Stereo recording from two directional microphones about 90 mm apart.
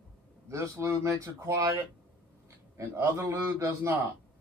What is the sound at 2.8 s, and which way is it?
Speech, 30° right (ahead or behind).